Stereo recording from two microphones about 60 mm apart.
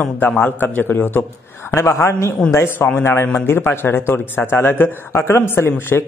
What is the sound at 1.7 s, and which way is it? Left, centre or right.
Speech, left.